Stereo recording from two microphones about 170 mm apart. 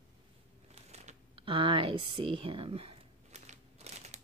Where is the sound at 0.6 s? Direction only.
40° right (ahead or behind).